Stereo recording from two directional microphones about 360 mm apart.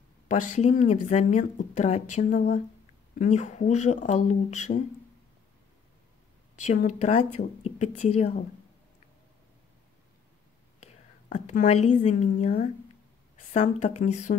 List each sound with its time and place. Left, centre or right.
0.3 s speech: centre
6.6 s speech: centre
10.8 s a woman's voice: centre